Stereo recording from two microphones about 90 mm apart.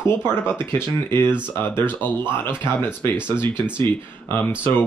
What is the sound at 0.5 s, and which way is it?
Speech, 25° left (ahead or behind).